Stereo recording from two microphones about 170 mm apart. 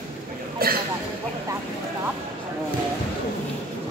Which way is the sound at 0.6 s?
65° right (ahead or behind).